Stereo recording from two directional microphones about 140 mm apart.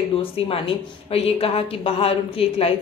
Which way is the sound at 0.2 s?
40° left (ahead or behind).